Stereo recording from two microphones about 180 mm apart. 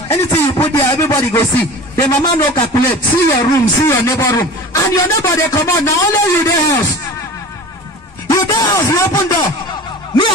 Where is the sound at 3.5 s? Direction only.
15° left (ahead or behind).